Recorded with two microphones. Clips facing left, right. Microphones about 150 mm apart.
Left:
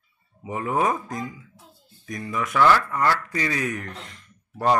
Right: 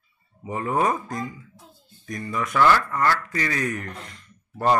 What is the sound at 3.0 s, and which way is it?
Speech, 15° left (ahead or behind).